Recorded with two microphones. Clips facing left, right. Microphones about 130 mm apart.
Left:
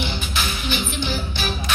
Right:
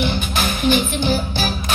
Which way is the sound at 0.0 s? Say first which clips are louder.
Right 6 dB; 50° right (ahead or behind).